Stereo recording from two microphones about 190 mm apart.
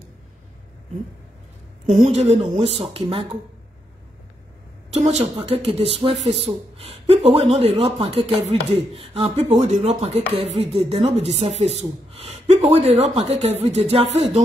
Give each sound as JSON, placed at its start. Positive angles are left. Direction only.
{"t": 1.9, "sound": "speech", "side_deg": -35}
{"t": 4.9, "sound": "a woman's voice", "side_deg": -35}